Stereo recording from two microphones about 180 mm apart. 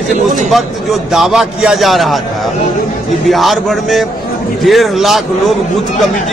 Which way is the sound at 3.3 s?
Centre (ahead or behind).